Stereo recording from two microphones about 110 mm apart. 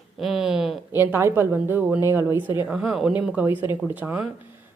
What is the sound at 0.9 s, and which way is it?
A woman's voice, 20° right (ahead or behind).